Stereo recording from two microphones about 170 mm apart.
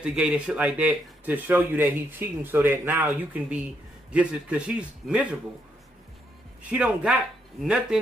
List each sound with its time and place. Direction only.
0.0 s speech: 5° right (ahead or behind)
6.6 s speech: 10° right (ahead or behind)